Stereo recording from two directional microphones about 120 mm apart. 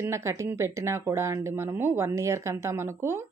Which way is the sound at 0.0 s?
25° right (ahead or behind).